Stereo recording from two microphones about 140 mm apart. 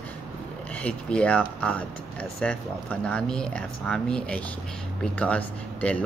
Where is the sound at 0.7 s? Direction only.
10° left (ahead or behind).